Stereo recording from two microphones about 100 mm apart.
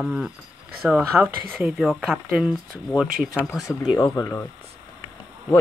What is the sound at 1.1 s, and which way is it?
Speech, 20° right (ahead or behind).